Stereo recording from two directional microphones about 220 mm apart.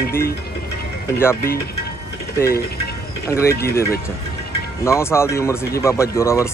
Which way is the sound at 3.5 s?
45° left (ahead or behind).